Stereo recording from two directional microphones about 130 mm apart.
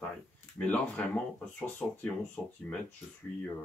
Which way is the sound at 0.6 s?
10° left (ahead or behind).